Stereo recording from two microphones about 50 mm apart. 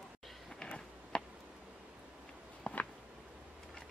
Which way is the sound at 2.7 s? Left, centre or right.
Left.